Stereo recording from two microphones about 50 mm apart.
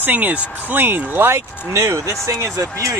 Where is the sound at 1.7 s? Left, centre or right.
Right.